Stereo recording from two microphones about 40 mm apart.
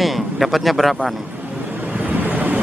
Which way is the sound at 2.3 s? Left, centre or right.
Right.